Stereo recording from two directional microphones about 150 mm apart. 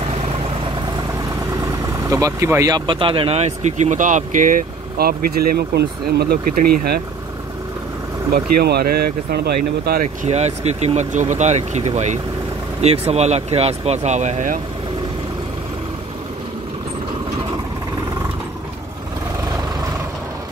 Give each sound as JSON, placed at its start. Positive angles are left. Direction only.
{"t": 1.6, "sound": "speech", "side_deg": -20}
{"t": 8.3, "sound": "speech", "side_deg": -90}
{"t": 10.0, "sound": "speech", "side_deg": -50}